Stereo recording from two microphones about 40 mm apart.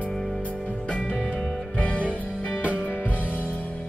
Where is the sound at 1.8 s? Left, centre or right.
Left.